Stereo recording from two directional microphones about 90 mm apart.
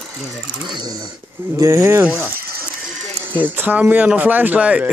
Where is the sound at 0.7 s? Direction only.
50° right (ahead or behind).